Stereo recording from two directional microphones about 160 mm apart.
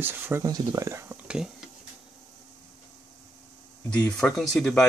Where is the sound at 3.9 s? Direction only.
10° left (ahead or behind).